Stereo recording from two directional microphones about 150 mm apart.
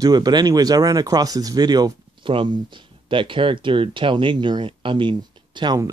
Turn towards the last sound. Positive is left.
turn(degrees=-30)  # may be behind; listen again after turning